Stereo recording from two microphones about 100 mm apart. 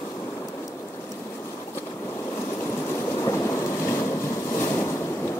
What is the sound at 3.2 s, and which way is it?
Boat, 30° left (ahead or behind).